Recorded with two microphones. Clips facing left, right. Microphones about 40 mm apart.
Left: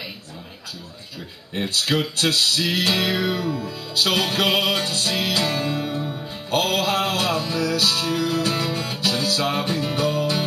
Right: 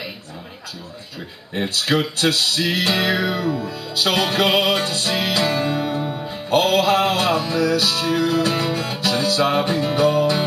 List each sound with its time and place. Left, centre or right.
1.5 s music: centre